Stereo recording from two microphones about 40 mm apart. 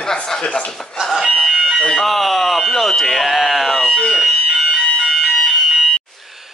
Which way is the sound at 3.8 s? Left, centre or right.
Left.